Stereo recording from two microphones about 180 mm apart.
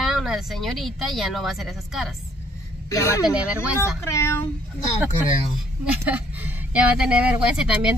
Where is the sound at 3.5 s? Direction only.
15° left (ahead or behind).